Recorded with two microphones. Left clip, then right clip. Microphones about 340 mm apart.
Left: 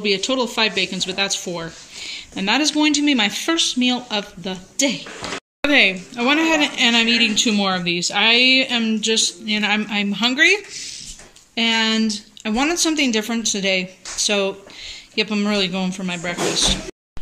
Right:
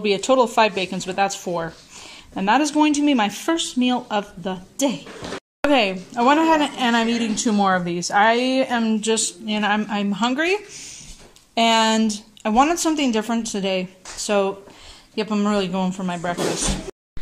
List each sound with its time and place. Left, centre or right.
0.0 s speech: centre